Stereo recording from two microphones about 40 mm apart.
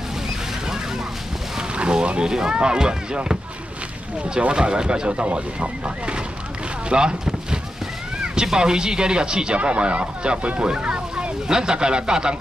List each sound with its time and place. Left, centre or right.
1.8 s speech: right
4.4 s speech: right
8.2 s speech: right